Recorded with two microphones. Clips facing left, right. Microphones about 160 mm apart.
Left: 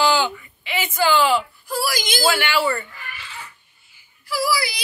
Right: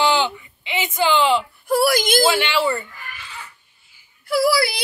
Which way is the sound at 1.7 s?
55° right (ahead or behind).